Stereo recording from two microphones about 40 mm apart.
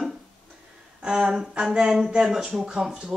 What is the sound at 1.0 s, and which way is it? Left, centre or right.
Speech, centre.